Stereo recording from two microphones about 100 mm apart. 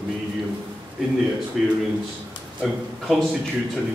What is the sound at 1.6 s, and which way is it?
Speech, centre (ahead or behind).